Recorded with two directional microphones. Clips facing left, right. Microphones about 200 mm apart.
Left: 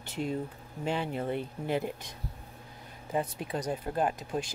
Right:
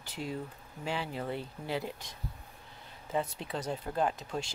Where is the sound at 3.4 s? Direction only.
15° left (ahead or behind).